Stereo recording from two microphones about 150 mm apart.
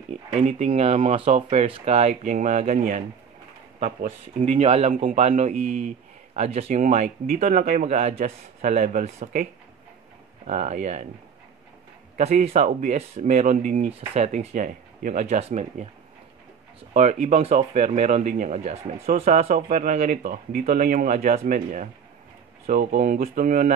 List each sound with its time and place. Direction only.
0.3 s speech: 55° right (ahead or behind)
12.2 s speech: 50° right (ahead or behind)
16.9 s speech: 50° right (ahead or behind)